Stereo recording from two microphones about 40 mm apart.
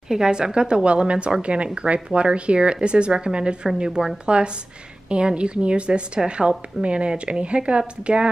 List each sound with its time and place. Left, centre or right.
0.1 s speech: centre
5.1 s speech: right